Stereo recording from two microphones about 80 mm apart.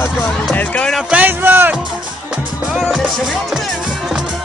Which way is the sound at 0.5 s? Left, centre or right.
Centre.